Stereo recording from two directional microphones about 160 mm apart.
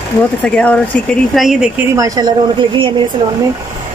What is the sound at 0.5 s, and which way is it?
Speech, 5° left (ahead or behind).